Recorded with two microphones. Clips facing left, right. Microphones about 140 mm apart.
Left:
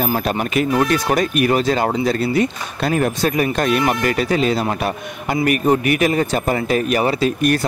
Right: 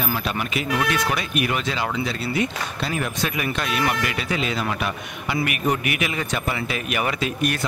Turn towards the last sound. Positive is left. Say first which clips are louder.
# left 7 dB
turn(degrees=40)  # may be behind; listen again after turning